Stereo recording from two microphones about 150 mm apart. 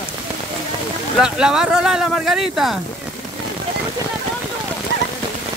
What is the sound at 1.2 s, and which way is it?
Speech, 5° right (ahead or behind).